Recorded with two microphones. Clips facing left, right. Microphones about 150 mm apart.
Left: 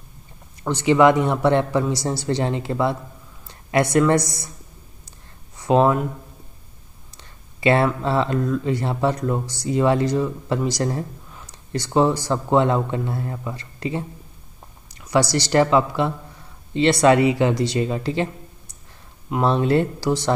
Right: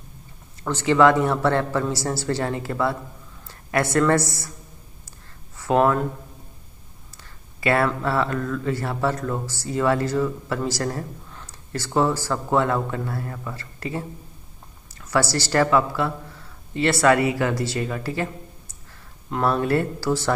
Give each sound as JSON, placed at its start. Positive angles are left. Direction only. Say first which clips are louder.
{"t": 0.7, "sound": "speech", "louder": "left 2 dB", "side_deg": 15}
{"t": 5.6, "sound": "speech", "louder": "left 2 dB", "side_deg": 20}
{"t": 7.2, "sound": "a man's voice", "louder": "left 3 dB", "side_deg": 25}
{"t": 19.4, "sound": "speech", "louder": "left 2 dB", "side_deg": 25}